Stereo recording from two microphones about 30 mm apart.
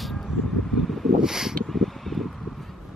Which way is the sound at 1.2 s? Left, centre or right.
Centre.